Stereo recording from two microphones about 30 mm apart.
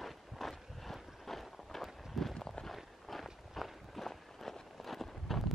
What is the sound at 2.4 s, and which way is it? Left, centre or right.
Walk, centre.